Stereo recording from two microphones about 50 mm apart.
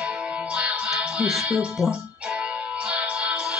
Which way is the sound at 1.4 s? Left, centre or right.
Centre.